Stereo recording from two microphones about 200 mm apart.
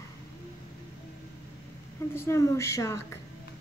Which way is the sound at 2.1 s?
15° left (ahead or behind).